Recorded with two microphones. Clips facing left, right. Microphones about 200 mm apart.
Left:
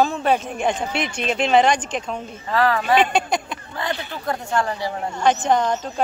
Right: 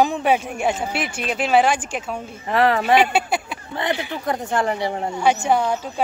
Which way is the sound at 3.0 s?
5° right (ahead or behind).